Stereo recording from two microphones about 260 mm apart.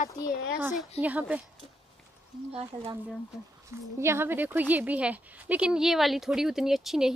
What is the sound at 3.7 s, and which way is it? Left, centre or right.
A woman's voice, centre.